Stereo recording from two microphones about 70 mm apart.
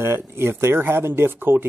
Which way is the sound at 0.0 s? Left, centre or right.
Right.